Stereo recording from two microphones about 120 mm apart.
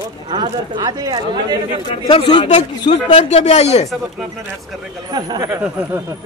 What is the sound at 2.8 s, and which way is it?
Speech, 45° left (ahead or behind).